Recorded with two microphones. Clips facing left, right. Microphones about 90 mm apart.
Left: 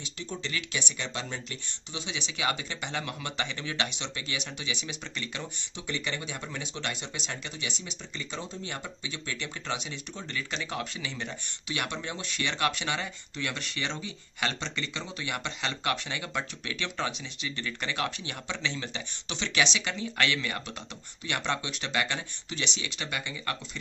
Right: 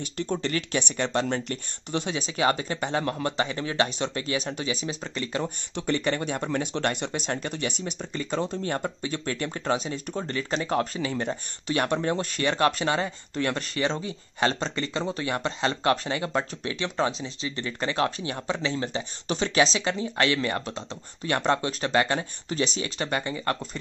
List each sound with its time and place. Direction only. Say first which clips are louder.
0.0 s speech: right 9 dB; 55° right (ahead or behind); by 5.5 s 35° right (ahead or behind)
5.8 s speech: right 9 dB; 50° right (ahead or behind)